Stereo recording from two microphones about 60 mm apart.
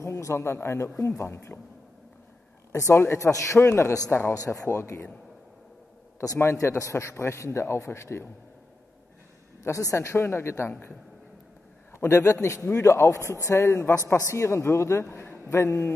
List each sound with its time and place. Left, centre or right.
0.0 s a man's voice: left
2.7 s a man's voice: left
3.6 s a man's voice: left
6.2 s a man's voice: left
9.6 s a man's voice: left
12.1 s a man's voice: left
15.0 s speech: left